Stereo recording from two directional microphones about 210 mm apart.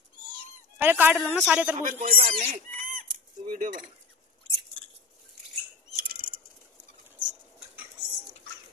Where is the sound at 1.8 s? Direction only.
35° right (ahead or behind).